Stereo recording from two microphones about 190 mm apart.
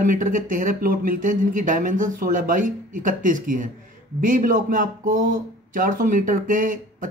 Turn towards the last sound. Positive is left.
turn(degrees=-45)  # may be behind; listen again after turning